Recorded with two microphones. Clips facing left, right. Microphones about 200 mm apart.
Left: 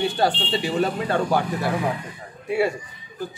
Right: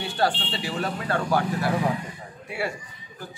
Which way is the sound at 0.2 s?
20° left (ahead or behind).